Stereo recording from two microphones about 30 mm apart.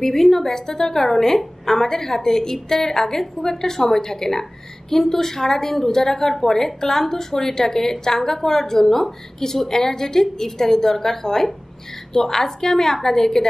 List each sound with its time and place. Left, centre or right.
0.0 s a woman's voice: centre